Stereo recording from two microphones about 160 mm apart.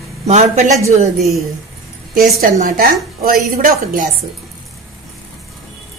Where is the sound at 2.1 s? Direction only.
65° right (ahead or behind).